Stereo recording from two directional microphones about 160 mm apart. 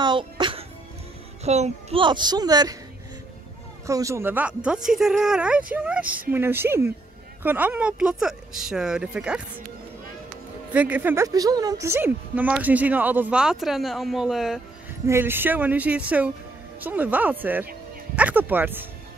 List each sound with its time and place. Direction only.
0.0 s music: 30° right (ahead or behind)
1.4 s child singing: 40° right (ahead or behind)
2.0 s speech: 30° right (ahead or behind)
3.8 s a woman's voice: 20° right (ahead or behind)
10.7 s a woman's voice: 10° right (ahead or behind)
15.0 s a woman's voice: 15° right (ahead or behind)